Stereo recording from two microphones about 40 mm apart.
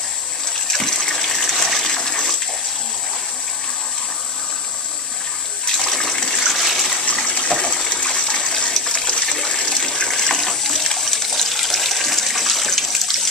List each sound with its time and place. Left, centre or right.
0.7 s water: centre
5.8 s water: centre
6.3 s water: centre
7.1 s water: left
8.1 s water: left; by 13.3 s centre